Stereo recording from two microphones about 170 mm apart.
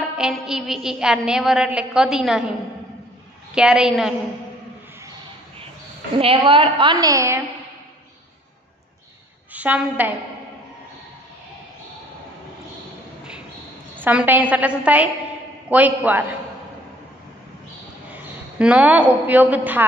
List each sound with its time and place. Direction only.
0.2 s a woman's voice: 5° right (ahead or behind)
3.5 s a woman's voice: 5° right (ahead or behind)
6.1 s a woman's voice: 30° right (ahead or behind); by 7.4 s 15° right (ahead or behind)
9.5 s a woman's voice: 10° right (ahead or behind)
13.9 s a woman's voice: 10° right (ahead or behind)
18.1 s a woman's voice: 10° right (ahead or behind)